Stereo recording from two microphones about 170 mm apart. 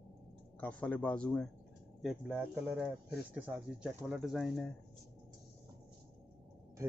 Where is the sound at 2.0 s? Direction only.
5° right (ahead or behind).